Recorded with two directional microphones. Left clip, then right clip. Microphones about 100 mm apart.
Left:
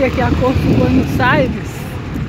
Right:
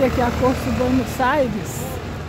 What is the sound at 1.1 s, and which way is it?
Speech, 25° right (ahead or behind).